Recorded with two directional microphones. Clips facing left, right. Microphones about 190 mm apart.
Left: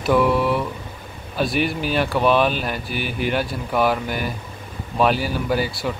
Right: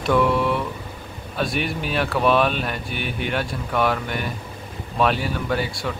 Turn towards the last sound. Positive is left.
turn(degrees=0)  # may be behind; listen again after turning